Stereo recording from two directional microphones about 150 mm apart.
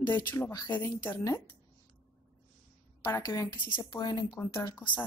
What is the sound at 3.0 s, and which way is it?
Speech, 25° left (ahead or behind).